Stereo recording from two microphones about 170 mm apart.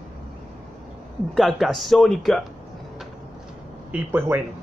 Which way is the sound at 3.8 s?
10° right (ahead or behind).